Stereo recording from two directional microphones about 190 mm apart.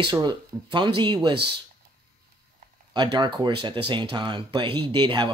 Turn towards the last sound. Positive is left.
turn(degrees=-25)  # may be behind; listen again after turning